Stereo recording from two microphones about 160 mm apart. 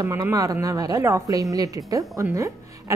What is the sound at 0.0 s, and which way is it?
Speech, 20° right (ahead or behind).